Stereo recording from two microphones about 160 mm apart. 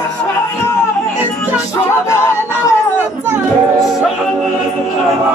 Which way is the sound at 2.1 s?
20° left (ahead or behind).